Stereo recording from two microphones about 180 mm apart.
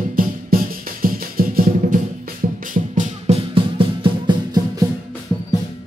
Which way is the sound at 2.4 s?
35° right (ahead or behind).